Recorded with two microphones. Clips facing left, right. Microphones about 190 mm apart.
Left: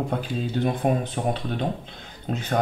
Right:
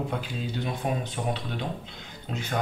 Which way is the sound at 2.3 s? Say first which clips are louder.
Left 5 dB; 45° left (ahead or behind).